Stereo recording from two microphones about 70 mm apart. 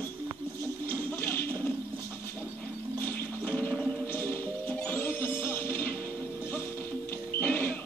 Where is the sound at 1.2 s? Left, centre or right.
Left.